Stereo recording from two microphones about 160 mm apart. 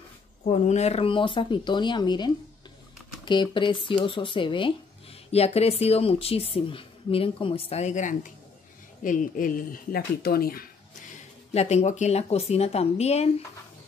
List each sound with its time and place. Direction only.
0.4 s speech: 45° left (ahead or behind); by 10.6 s 70° left (ahead or behind)
11.5 s speech: 45° left (ahead or behind)